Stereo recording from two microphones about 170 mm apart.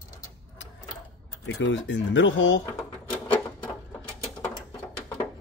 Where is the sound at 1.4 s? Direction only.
90° left.